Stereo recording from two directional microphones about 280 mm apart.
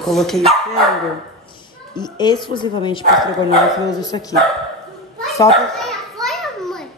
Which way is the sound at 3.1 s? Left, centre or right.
Centre.